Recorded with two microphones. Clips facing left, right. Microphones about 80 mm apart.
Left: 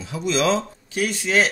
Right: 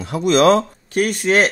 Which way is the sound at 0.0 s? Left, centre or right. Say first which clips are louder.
Right 8 dB; right.